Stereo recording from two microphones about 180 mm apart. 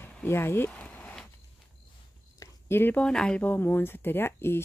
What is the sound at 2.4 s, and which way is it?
Speech, 15° left (ahead or behind).